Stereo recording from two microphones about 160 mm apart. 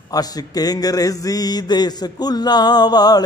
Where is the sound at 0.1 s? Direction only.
25° left (ahead or behind).